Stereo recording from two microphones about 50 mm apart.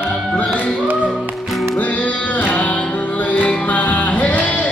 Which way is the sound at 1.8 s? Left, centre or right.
Left.